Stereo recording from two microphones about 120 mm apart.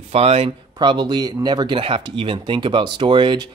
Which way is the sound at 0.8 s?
40° right (ahead or behind).